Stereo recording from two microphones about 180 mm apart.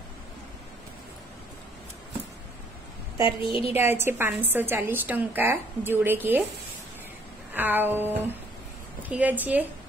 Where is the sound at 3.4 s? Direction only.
30° left (ahead or behind).